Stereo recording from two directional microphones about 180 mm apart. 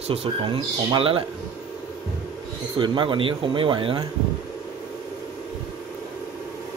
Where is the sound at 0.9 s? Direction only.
30° right (ahead or behind).